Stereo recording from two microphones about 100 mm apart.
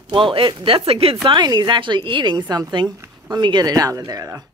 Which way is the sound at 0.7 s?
70° right (ahead or behind).